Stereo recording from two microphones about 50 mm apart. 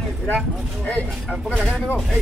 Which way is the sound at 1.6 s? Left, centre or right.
Centre.